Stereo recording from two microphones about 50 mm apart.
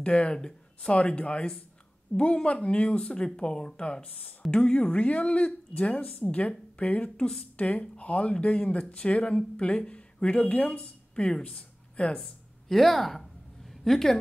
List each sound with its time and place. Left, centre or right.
0.0 s speech: left
12.6 s a woman's voice: centre